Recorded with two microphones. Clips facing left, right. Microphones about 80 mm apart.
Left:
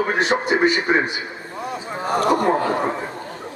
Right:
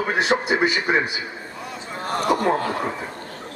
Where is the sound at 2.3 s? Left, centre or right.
Centre.